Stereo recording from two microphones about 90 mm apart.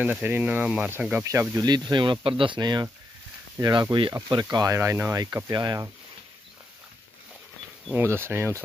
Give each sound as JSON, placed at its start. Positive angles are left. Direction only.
{"t": 0.0, "sound": "speech", "side_deg": -20}
{"t": 1.2, "sound": "speech", "side_deg": -30}
{"t": 1.6, "sound": "speech", "side_deg": -55}
{"t": 3.6, "sound": "speech", "side_deg": -35}
{"t": 4.3, "sound": "speech", "side_deg": -50}
{"t": 4.7, "sound": "speech", "side_deg": -30}
{"t": 5.2, "sound": "speech", "side_deg": -45}
{"t": 7.9, "sound": "speech", "side_deg": -25}